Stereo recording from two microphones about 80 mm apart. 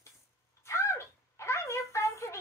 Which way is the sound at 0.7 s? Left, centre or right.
Left.